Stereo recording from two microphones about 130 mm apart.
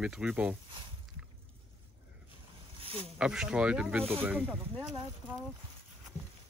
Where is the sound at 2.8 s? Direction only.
45° right (ahead or behind).